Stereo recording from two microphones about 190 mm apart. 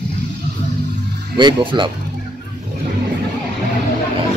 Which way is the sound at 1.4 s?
25° right (ahead or behind).